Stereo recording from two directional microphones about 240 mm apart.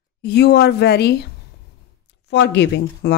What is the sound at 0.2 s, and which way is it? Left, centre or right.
Speech, left.